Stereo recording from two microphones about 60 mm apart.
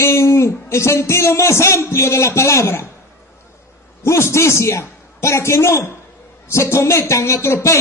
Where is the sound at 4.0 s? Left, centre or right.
Left.